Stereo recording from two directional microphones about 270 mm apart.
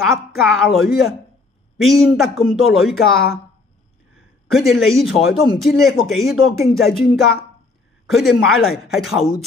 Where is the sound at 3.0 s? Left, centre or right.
Left.